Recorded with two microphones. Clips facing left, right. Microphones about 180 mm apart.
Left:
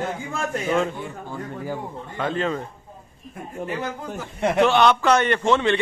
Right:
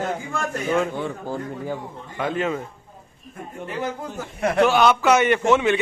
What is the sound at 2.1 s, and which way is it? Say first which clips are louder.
Speech: right 1 dB; 10° right (ahead or behind).